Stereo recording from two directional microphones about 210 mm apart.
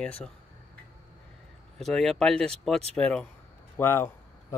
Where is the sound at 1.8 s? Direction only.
Centre (ahead or behind).